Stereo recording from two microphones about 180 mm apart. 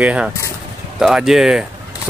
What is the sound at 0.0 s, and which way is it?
Speech, 10° right (ahead or behind).